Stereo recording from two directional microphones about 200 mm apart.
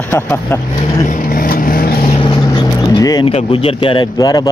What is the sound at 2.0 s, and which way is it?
Vehicle, 25° left (ahead or behind).